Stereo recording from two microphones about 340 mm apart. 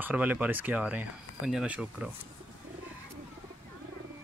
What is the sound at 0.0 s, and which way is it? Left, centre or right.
Speech, centre.